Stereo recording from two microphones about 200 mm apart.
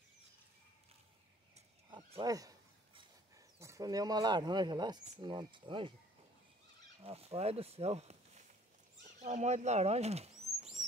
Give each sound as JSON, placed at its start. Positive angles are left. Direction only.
{"t": 1.9, "sound": "a sound", "side_deg": -25}
{"t": 3.5, "sound": "speech", "side_deg": -15}
{"t": 7.0, "sound": "speech", "side_deg": -30}